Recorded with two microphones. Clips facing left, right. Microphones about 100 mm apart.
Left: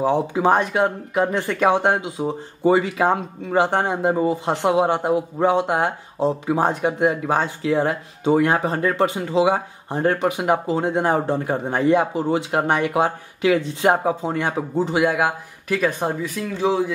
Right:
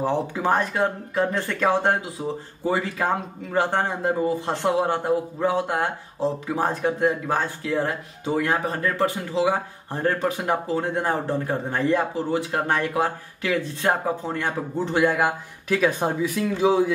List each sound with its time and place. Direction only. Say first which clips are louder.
0.0 s speech: left 5 dB; 20° left (ahead or behind)
15.0 s speech: even; 5° left (ahead or behind)